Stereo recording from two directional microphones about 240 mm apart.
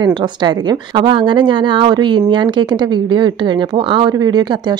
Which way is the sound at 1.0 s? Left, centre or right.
Centre.